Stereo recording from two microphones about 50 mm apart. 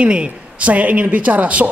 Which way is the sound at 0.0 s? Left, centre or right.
Right.